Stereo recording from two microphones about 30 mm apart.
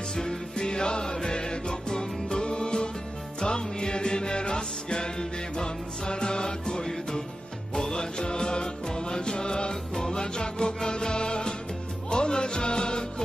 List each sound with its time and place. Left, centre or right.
0.1 s music: left
6.8 s music: centre
9.9 s music: centre
10.2 s music: left